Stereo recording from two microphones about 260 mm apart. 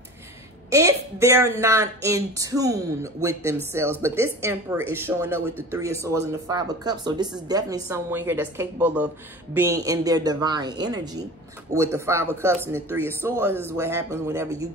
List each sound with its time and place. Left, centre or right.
0.7 s a woman's voice: centre